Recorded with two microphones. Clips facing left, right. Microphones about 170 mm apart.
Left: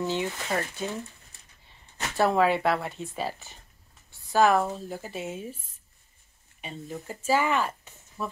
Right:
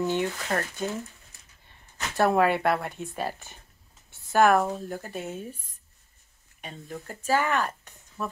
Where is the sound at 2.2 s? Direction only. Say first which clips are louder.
Right 1 dB; centre (ahead or behind).